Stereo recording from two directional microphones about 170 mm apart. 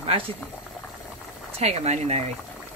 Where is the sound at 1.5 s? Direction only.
40° right (ahead or behind).